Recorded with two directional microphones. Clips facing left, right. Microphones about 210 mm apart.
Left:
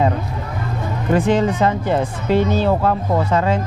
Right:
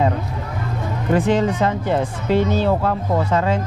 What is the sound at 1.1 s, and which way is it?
Speech, 15° left (ahead or behind).